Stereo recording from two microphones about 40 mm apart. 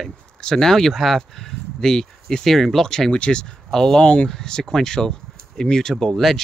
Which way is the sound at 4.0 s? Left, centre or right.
Left.